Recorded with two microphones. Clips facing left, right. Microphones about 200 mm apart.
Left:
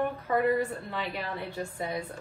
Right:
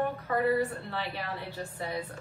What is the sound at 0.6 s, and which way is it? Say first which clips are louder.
A woman's voice: even; 15° left (ahead or behind).